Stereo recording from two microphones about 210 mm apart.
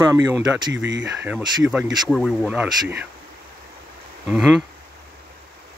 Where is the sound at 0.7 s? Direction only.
60° right (ahead or behind).